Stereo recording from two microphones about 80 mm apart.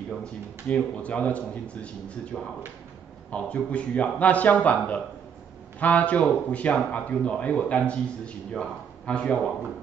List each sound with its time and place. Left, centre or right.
0.2 s speech: centre
3.3 s speech: centre